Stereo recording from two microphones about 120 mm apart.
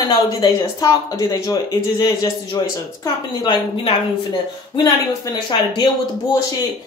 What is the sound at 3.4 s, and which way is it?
Speech, 45° left (ahead or behind).